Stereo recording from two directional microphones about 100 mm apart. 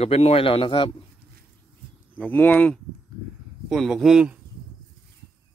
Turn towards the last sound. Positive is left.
turn(degrees=-5)  # may be behind; listen again after turning